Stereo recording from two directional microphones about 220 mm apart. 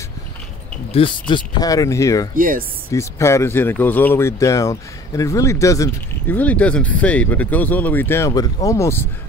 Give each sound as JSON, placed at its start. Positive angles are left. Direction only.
{"t": 1.3, "sound": "speech", "side_deg": 15}
{"t": 2.3, "sound": "speech", "side_deg": -40}
{"t": 2.9, "sound": "speech", "side_deg": 15}